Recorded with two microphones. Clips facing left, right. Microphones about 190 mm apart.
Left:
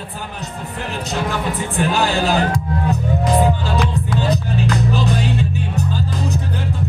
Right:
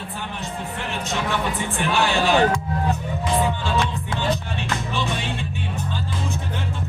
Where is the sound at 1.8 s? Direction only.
35° left (ahead or behind).